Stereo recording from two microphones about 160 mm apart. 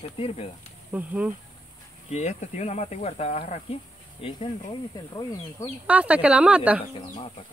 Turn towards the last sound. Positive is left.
turn(degrees=-5)  # may be behind; listen again after turning